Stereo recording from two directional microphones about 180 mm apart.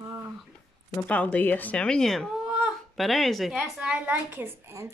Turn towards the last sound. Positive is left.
turn(degrees=-10)  # may be behind; listen again after turning